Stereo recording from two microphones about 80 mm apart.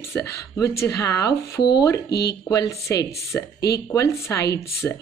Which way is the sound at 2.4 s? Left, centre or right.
Left.